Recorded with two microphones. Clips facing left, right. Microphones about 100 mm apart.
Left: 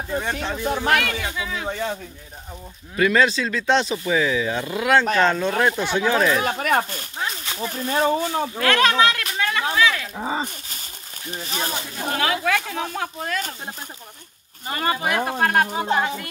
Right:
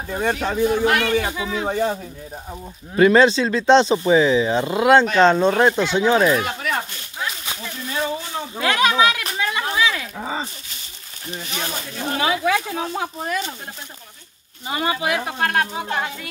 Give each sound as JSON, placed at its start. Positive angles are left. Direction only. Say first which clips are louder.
{"t": 0.1, "sound": "speech", "louder": "right 4 dB", "side_deg": -45}
{"t": 0.7, "sound": "speech", "louder": "right 2 dB", "side_deg": 45}
{"t": 1.3, "sound": "speech", "louder": "right 4 dB", "side_deg": -30}
{"t": 1.7, "sound": "speech", "louder": "right 6 dB", "side_deg": -45}
{"t": 3.0, "sound": "speech", "louder": "right 5 dB", "side_deg": -30}
{"t": 6.4, "sound": "speech", "louder": "left 4 dB", "side_deg": 45}
{"t": 8.5, "sound": "speech", "louder": "right 1 dB", "side_deg": -15}
{"t": 9.4, "sound": "a sound", "louder": "left 1 dB", "side_deg": -15}
{"t": 10.1, "sound": "speech", "louder": "left 1 dB", "side_deg": 10}
{"t": 11.4, "sound": "speech", "louder": "left 2 dB", "side_deg": 40}
{"t": 11.7, "sound": "speech", "louder": "right 1 dB", "side_deg": 10}
{"t": 12.2, "sound": "speech", "louder": "right 2 dB", "side_deg": -20}
{"t": 14.7, "sound": "speech", "louder": "right 1 dB", "side_deg": -5}